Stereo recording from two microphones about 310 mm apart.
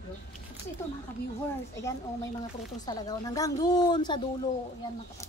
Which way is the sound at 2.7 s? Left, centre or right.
Centre.